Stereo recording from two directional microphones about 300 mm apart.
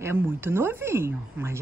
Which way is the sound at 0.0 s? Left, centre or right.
Centre.